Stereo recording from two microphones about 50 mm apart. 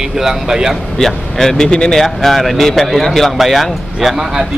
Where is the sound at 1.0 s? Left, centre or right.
Centre.